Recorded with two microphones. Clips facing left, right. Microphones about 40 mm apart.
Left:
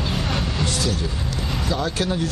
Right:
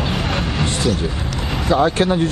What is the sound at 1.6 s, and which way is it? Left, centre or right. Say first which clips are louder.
Speech: right 9 dB; right.